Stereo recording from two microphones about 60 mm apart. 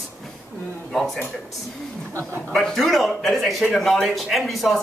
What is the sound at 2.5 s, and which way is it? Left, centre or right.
A man's voice, centre.